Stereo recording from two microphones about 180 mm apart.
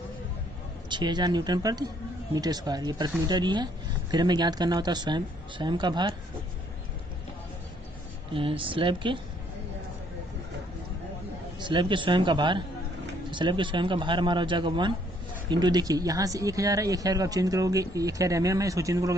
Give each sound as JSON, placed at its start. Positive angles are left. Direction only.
{"t": 0.8, "sound": "speech", "side_deg": -25}
{"t": 8.3, "sound": "speech", "side_deg": -30}
{"t": 11.6, "sound": "speech", "side_deg": -25}